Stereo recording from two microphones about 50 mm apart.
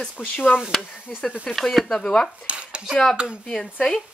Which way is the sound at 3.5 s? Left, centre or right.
Centre.